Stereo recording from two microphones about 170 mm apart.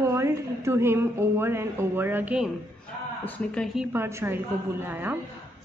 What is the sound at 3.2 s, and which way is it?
A woman's voice, 5° left (ahead or behind).